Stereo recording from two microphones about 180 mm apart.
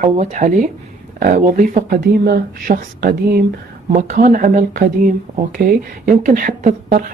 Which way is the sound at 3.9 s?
45° right (ahead or behind).